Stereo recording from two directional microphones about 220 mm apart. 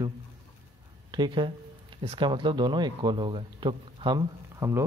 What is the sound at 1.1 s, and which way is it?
Speech, 20° right (ahead or behind).